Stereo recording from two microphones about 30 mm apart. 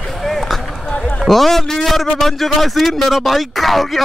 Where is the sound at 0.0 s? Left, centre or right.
Centre.